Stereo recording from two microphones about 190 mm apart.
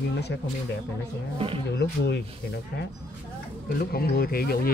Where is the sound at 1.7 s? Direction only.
60° left (ahead or behind).